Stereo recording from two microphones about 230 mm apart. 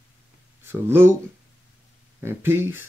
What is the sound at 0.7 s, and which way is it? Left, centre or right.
Speech, centre.